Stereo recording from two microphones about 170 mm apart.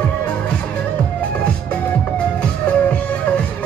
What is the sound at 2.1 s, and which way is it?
Music, 5° left (ahead or behind).